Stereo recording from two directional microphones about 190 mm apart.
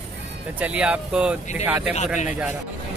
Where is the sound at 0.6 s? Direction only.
5° right (ahead or behind).